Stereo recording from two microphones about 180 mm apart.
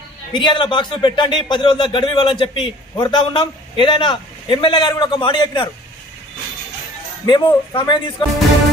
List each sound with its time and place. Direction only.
0.3 s speech: 25° left (ahead or behind)
7.2 s speech: 25° left (ahead or behind)